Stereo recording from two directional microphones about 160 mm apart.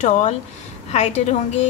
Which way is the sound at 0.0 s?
50° left (ahead or behind).